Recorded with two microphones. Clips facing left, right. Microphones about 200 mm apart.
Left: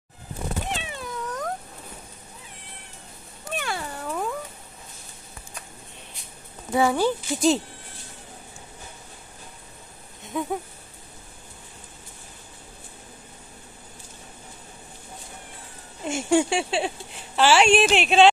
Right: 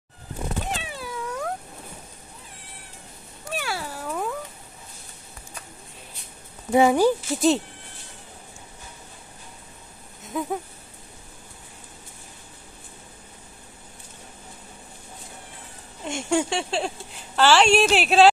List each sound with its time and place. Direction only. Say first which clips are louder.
0.7 s cat: even; 5° right (ahead or behind)
3.5 s cat: even; 5° right (ahead or behind)
6.7 s speech: right 4 dB; 20° right (ahead or behind)
7.2 s speech: right 1 dB; centre (ahead or behind)
10.2 s a sound: even; centre (ahead or behind)
16.1 s speech: left 3 dB; 10° left (ahead or behind)